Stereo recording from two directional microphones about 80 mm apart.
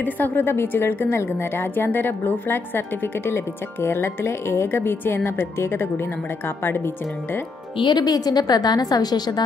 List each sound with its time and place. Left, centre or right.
0.0 s a woman's voice: left
7.7 s a woman's voice: left